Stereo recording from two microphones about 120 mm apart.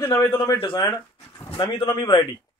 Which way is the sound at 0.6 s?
45° left (ahead or behind).